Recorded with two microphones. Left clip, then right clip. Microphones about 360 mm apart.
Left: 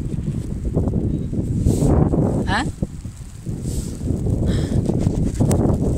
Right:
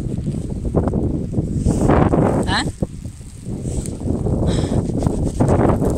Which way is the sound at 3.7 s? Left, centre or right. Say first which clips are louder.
Right 4 dB; right.